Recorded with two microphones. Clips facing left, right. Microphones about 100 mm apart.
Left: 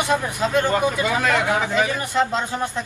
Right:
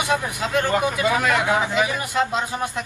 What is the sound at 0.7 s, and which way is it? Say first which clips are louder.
Speech: even; 20° right (ahead or behind).